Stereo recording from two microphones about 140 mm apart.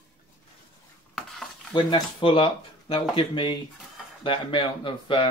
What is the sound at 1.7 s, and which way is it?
Speech, 35° left (ahead or behind).